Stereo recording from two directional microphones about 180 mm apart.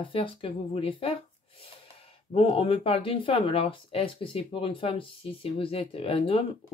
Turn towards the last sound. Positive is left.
turn(degrees=30)  # may be behind; listen again after turning